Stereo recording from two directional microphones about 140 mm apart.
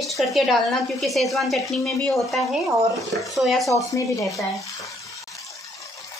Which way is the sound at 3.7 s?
25° left (ahead or behind).